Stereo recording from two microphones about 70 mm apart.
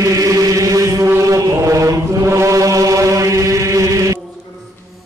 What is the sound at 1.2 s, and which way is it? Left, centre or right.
Mantra, right.